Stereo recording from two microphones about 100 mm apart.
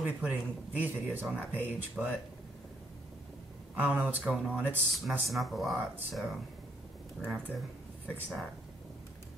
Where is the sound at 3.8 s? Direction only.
15° right (ahead or behind).